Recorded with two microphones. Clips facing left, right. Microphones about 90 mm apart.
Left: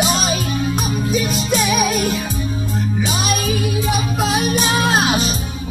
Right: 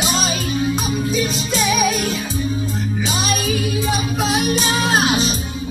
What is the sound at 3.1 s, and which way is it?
Music, 55° left (ahead or behind).